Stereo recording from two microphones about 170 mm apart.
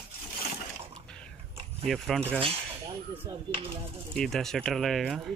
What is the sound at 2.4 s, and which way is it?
Cutlery, 35° right (ahead or behind).